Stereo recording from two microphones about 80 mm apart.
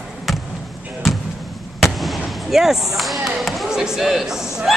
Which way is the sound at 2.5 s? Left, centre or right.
Centre.